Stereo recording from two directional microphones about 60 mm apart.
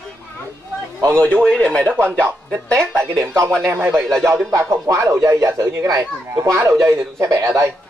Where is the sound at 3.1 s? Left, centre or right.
Right.